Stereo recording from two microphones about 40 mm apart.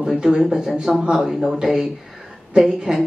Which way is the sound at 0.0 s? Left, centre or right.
Centre.